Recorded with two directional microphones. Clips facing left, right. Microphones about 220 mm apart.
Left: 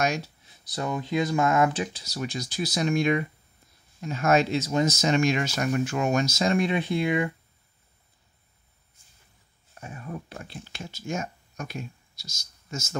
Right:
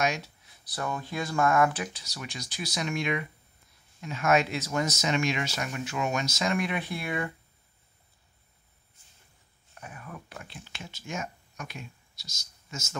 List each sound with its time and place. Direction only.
0.7 s speech: 20° left (ahead or behind)
2.0 s speech: 35° left (ahead or behind)
5.0 s speech: 40° left (ahead or behind); by 7.2 s 20° left (ahead or behind)
9.8 s speech: 30° left (ahead or behind)